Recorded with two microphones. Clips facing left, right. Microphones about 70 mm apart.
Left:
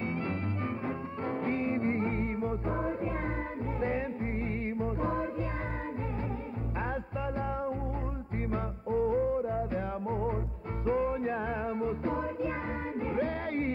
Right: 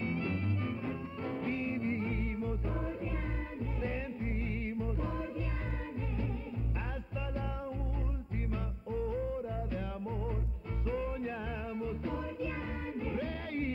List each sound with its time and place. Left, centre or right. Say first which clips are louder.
0.8 s music: left 4 dB; left
4.7 s music: left 6 dB; left
8.5 s music: left 8 dB; left